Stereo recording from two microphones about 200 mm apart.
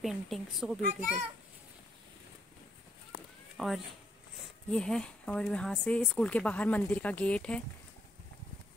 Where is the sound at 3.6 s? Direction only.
Centre (ahead or behind).